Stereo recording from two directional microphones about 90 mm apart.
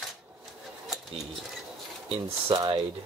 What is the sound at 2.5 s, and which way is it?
Speech, 50° right (ahead or behind).